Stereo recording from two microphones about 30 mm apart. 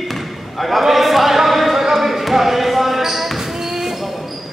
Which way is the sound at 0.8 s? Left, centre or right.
Centre.